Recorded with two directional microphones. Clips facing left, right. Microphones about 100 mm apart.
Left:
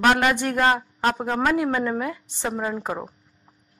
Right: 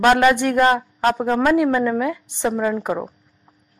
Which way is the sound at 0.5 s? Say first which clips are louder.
Right 4 dB; 20° left (ahead or behind).